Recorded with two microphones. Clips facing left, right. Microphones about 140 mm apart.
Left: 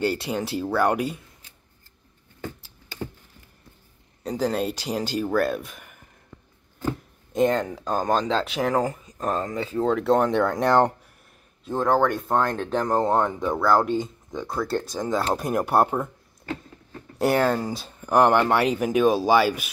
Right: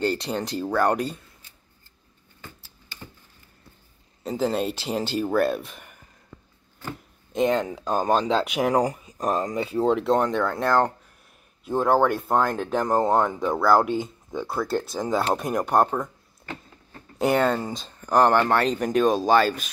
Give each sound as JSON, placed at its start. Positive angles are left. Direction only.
{"t": 0.0, "sound": "speech", "side_deg": 10}
{"t": 4.2, "sound": "speech", "side_deg": -5}
{"t": 7.3, "sound": "speech", "side_deg": 0}
{"t": 10.5, "sound": "speech", "side_deg": 20}
{"t": 11.6, "sound": "speech", "side_deg": -10}
{"t": 17.2, "sound": "speech", "side_deg": 5}